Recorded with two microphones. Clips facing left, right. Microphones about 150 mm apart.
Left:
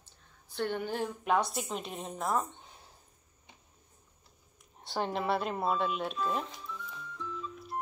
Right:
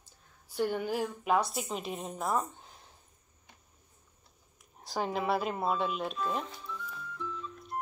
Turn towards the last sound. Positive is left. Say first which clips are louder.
# even
turn(degrees=0)  # may be behind; listen again after turning